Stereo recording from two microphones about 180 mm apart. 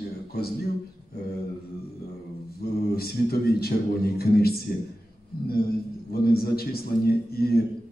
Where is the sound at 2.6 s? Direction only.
60° left (ahead or behind).